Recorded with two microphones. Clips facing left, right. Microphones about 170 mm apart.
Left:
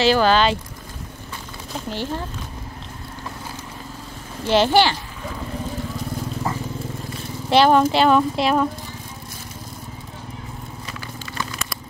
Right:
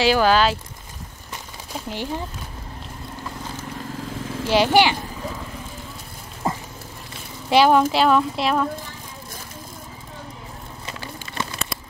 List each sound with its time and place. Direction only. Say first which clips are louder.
0.0 s speech: left 1 dB; 10° right (ahead or behind)
1.9 s speech: left 1 dB; 15° right (ahead or behind)
4.5 s speech: left 1 dB; 10° right (ahead or behind)
7.4 s speech: left 1 dB; 5° right (ahead or behind)
10.9 s a sound: even; 25° right (ahead or behind)